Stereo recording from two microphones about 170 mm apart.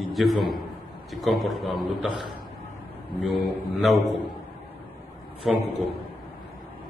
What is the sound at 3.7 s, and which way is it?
Speech, centre (ahead or behind).